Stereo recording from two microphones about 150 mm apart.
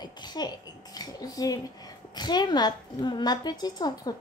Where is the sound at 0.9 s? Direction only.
25° left (ahead or behind).